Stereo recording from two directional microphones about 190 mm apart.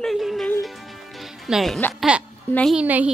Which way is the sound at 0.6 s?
Centre (ahead or behind).